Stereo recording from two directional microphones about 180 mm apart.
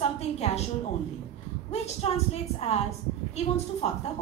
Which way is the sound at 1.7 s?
35° left (ahead or behind).